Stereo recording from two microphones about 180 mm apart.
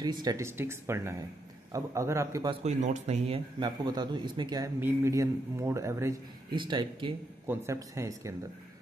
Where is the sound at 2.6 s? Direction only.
40° right (ahead or behind).